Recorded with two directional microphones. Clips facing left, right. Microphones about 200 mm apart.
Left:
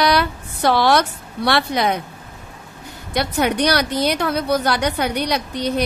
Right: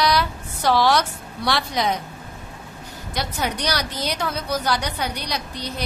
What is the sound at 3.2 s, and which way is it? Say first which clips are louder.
A woman's voice: left 8 dB; 60° left (ahead or behind).